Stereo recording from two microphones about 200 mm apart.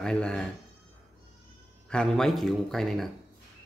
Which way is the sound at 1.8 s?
5° left (ahead or behind).